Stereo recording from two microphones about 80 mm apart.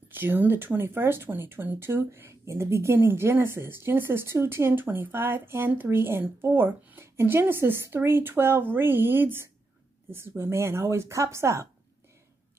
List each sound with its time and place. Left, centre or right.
0.1 s speech: right